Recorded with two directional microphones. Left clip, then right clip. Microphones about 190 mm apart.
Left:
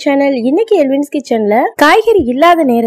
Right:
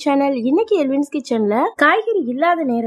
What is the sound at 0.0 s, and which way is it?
Speech, 15° left (ahead or behind).